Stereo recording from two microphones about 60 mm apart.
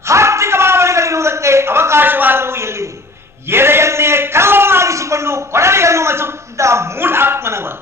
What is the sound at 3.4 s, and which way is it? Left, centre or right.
A man's voice, right.